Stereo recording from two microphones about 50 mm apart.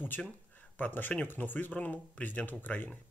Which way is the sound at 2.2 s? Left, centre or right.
Left.